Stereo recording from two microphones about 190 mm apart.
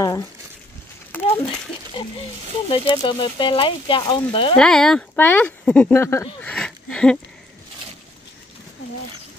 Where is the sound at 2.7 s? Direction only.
25° left (ahead or behind).